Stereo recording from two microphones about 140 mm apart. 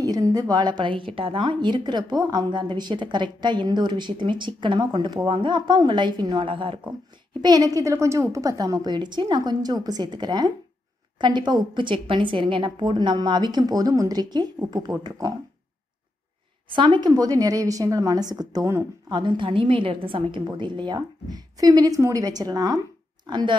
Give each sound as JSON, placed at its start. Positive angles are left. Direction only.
{"t": 0.0, "sound": "a woman's voice", "side_deg": -25}
{"t": 7.4, "sound": "a woman's voice", "side_deg": -25}
{"t": 16.7, "sound": "a woman's voice", "side_deg": -35}
{"t": 19.0, "sound": "a woman's voice", "side_deg": -35}